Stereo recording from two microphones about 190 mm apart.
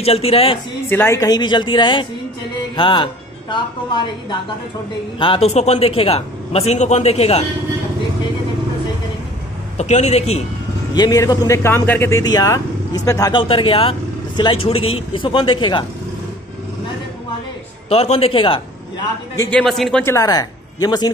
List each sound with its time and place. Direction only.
0.0 s a man's voice: 30° left (ahead or behind)
0.8 s a man's voice: 10° left (ahead or behind); by 7.4 s 35° left (ahead or behind)
9.8 s a man's voice: 35° left (ahead or behind)
11.0 s speech: 20° left (ahead or behind)
13.4 s speech: 30° left (ahead or behind)
17.8 s a man's voice: 30° left (ahead or behind)
19.5 s speech: centre (ahead or behind); by 21.1 s 20° left (ahead or behind)